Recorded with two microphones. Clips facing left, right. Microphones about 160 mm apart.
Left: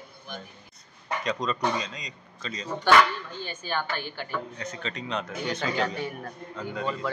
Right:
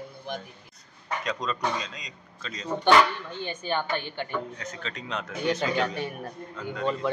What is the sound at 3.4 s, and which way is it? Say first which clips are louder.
Speech: right 3 dB; 20° right (ahead or behind).